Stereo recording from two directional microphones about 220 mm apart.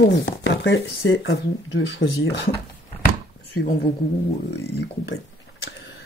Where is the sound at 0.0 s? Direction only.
55° left (ahead or behind).